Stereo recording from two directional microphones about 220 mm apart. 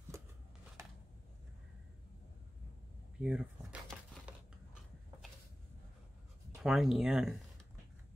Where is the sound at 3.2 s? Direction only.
5° right (ahead or behind).